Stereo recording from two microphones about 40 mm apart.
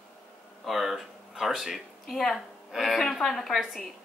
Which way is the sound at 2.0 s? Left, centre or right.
Centre.